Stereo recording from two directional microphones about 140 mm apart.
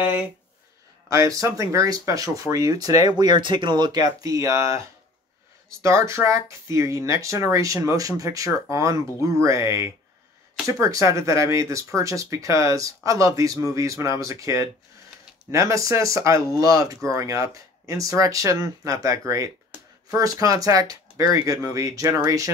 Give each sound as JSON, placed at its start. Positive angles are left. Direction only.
{"t": 1.1, "sound": "speech", "side_deg": -25}